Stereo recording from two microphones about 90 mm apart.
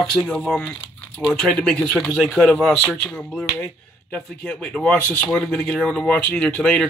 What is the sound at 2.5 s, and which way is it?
Speech, 10° left (ahead or behind).